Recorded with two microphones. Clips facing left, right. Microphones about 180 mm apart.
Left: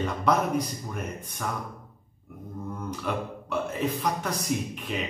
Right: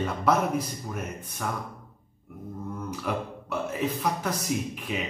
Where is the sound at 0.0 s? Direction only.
5° right (ahead or behind).